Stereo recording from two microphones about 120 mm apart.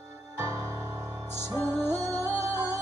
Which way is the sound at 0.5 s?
25° right (ahead or behind).